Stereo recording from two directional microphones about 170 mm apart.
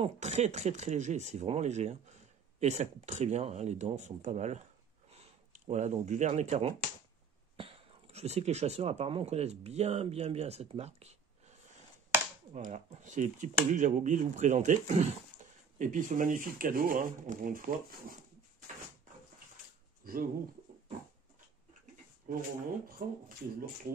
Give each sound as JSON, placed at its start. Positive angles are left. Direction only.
{"t": 0.0, "sound": "speech", "side_deg": -40}
{"t": 12.5, "sound": "speech", "side_deg": -45}
{"t": 20.0, "sound": "speech", "side_deg": -60}
{"t": 22.3, "sound": "speech", "side_deg": -55}